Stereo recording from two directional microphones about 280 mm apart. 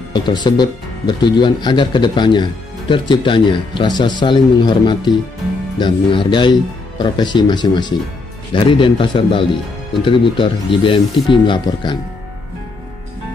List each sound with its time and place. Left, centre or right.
0.1 s speech: centre